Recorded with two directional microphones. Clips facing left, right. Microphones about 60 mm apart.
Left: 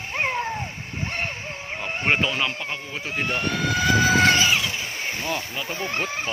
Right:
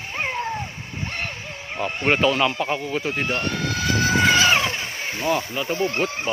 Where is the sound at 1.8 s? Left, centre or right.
Centre.